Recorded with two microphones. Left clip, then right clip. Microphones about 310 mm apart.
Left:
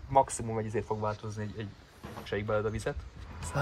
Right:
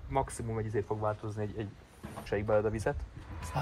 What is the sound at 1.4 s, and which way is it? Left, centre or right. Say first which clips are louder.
Speech: right 3 dB; centre.